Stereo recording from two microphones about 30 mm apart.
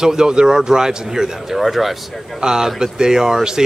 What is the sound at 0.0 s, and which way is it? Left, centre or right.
Speech, right.